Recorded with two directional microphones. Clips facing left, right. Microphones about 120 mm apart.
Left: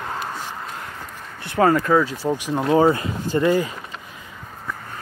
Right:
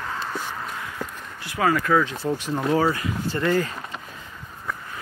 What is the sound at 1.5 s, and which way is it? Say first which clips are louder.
Speech: left 5 dB; 35° left (ahead or behind).